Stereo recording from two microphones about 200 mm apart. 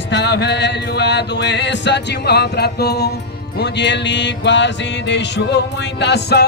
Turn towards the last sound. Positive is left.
turn(degrees=55)  # may be behind; listen again after turning